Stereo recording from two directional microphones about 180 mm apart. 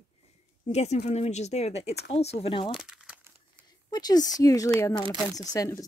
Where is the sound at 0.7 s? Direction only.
40° left (ahead or behind).